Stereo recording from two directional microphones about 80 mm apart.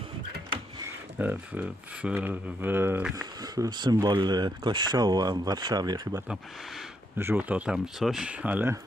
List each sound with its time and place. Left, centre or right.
1.1 s speech: centre
3.2 s speech: right
4.0 s speech: right
7.2 s speech: right
7.7 s speech: centre
8.3 s speech: centre